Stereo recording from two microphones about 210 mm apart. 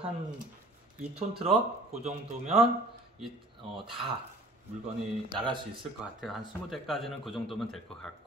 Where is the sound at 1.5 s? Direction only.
30° right (ahead or behind).